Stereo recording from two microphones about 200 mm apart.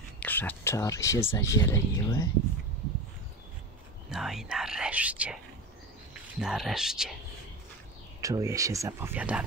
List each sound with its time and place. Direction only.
0.2 s speech: 10° left (ahead or behind)
4.1 s speech: centre (ahead or behind)
8.2 s speech: 15° right (ahead or behind)